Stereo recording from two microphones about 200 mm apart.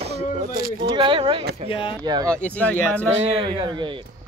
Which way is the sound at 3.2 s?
25° right (ahead or behind).